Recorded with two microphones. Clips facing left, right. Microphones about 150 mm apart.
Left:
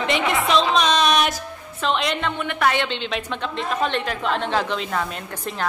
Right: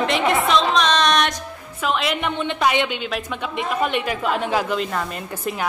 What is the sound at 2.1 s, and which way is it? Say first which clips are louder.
A woman's voice: right 2 dB; 20° right (ahead or behind).